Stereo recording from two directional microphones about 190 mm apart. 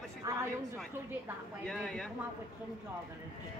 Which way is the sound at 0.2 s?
15° right (ahead or behind).